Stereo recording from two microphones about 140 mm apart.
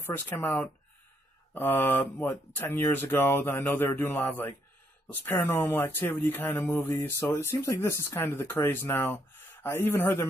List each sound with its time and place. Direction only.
0.0 s speech: 15° left (ahead or behind)
1.5 s speech: 15° left (ahead or behind)